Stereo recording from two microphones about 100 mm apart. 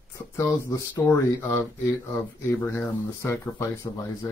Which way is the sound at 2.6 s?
20° left (ahead or behind).